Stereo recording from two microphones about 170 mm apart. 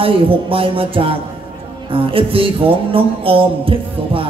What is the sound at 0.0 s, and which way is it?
Music, 30° right (ahead or behind).